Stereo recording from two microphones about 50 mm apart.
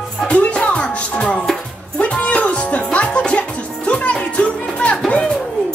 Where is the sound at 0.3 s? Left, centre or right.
Left.